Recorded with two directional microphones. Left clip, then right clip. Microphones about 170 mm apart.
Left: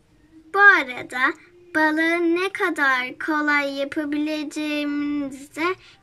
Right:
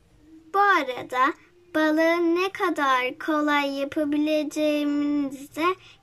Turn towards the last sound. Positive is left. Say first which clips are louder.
# even
turn(degrees=-20)  # may be behind; listen again after turning